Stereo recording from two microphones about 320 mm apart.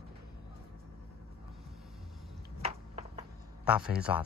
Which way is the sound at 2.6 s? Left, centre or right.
Centre.